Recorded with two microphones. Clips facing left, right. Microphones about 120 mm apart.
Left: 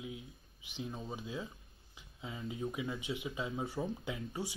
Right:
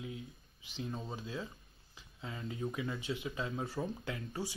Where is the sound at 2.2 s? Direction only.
Centre (ahead or behind).